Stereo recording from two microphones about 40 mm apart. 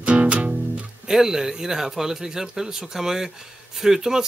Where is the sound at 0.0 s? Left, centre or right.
Right.